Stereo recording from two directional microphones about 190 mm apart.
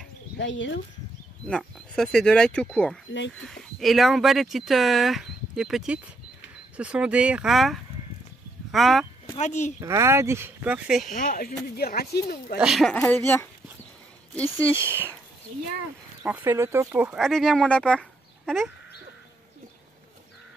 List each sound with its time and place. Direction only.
0.4 s speech: 70° left (ahead or behind)
1.5 s speech: 5° left (ahead or behind)
3.1 s speech: 75° left (ahead or behind)
3.4 s speech: centre (ahead or behind)
9.4 s speech: 40° left (ahead or behind)
9.8 s speech: 15° right (ahead or behind)
11.1 s speech: 45° left (ahead or behind)
12.5 s speech: centre (ahead or behind)
12.9 s speech: 10° left (ahead or behind)
14.6 s speech: 15° right (ahead or behind)
16.2 s speech: 10° right (ahead or behind)
17.2 s speech: centre (ahead or behind)